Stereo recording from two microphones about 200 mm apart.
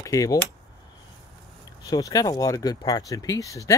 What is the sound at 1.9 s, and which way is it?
Speech, 20° left (ahead or behind).